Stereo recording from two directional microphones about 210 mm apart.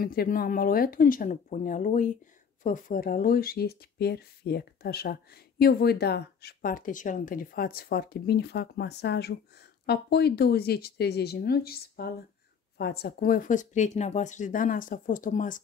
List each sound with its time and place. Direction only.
0.0 s speech: 45° left (ahead or behind)